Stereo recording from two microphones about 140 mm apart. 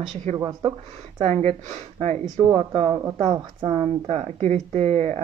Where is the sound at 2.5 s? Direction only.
40° right (ahead or behind).